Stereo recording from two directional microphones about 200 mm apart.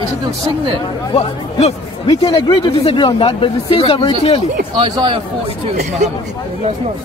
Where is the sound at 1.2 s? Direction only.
30° left (ahead or behind).